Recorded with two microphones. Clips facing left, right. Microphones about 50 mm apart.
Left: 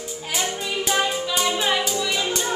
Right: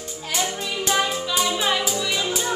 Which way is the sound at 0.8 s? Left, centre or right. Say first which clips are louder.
Right 1 dB; centre.